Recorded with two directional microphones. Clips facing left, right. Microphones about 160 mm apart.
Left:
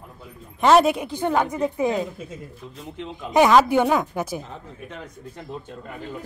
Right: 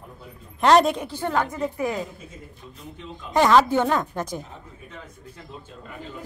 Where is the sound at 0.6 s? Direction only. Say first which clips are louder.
Left 1 dB; 5° left (ahead or behind); by 2.0 s 20° left (ahead or behind).